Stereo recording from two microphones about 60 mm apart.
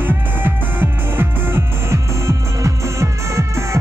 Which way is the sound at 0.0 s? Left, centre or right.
Right.